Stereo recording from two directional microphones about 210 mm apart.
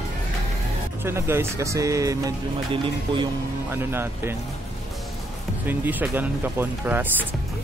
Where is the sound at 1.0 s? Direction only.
10° right (ahead or behind).